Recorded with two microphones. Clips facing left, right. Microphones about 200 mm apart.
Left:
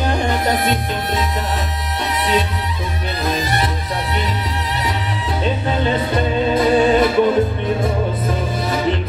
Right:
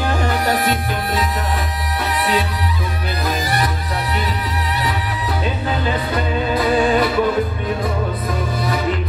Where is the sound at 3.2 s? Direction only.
25° left (ahead or behind).